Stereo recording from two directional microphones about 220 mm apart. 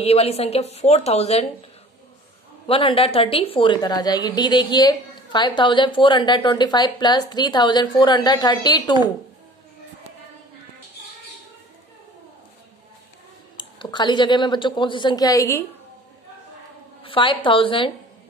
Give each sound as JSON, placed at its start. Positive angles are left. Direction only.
{"t": 0.0, "sound": "a woman's voice", "side_deg": 25}
{"t": 13.6, "sound": "a woman's voice", "side_deg": 20}
{"t": 17.0, "sound": "a woman's voice", "side_deg": 25}